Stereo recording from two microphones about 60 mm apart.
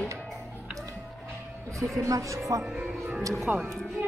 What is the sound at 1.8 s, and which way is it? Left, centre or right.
Speech, right.